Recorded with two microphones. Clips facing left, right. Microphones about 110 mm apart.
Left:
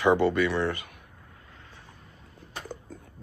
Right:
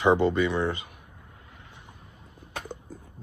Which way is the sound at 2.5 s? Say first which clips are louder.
Right 2 dB; 20° right (ahead or behind).